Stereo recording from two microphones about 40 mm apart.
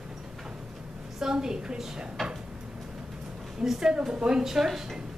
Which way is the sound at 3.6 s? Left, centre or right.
Centre.